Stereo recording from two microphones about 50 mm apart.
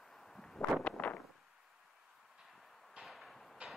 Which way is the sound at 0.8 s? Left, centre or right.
Left.